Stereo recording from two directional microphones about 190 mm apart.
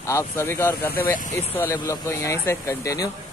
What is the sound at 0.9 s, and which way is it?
Speech, 50° left (ahead or behind).